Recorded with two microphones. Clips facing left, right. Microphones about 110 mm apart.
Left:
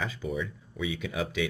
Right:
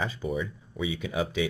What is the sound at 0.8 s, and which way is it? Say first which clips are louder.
Speech: right 2 dB; 25° right (ahead or behind).